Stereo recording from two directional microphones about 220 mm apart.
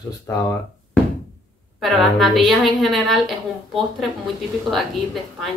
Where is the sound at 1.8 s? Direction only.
Centre (ahead or behind).